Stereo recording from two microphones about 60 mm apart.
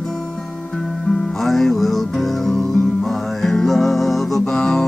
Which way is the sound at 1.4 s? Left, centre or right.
Centre.